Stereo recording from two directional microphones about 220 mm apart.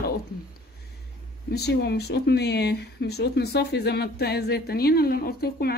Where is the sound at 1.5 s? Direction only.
50° left (ahead or behind).